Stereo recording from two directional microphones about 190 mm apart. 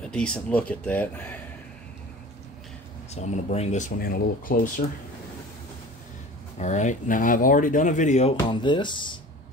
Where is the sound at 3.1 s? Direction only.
35° left (ahead or behind).